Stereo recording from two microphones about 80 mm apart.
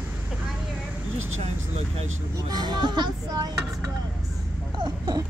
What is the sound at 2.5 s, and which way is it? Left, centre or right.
Speech, right.